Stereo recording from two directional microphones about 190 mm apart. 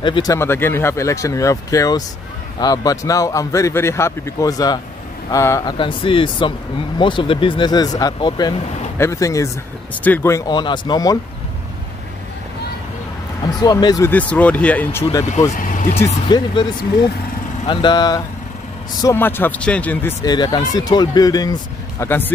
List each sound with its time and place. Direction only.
0.0 s speech: 25° left (ahead or behind)
13.4 s speech: 20° left (ahead or behind)
15.5 s speech: 45° left (ahead or behind)
16.3 s speech: 20° left (ahead or behind)
17.6 s speech: 25° left (ahead or behind)